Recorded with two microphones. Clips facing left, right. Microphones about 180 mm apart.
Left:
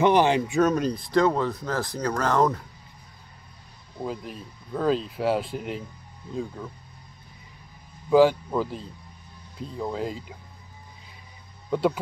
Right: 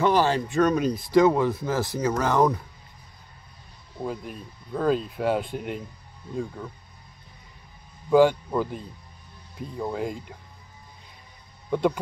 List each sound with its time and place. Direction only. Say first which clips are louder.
0.0 s speech: left 2 dB; 20° left (ahead or behind)
0.6 s speech: even; centre (ahead or behind)
4.0 s speech: even; centre (ahead or behind)
8.1 s speech: even; 5° left (ahead or behind)
11.7 s speech: even; 5° left (ahead or behind)